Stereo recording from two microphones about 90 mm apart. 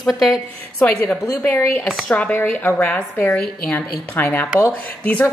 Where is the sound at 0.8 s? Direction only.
20° left (ahead or behind).